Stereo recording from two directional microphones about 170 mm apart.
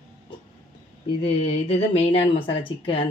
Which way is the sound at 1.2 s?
35° left (ahead or behind).